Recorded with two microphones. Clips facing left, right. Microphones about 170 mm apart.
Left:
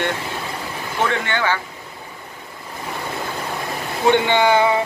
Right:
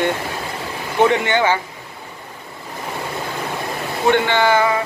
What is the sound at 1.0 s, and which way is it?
Speech, 20° right (ahead or behind).